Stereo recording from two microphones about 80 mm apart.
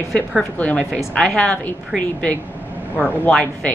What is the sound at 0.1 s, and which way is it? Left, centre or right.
Speech, centre.